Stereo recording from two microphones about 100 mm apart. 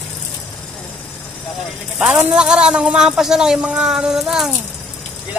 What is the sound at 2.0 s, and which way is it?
Speech, 10° right (ahead or behind).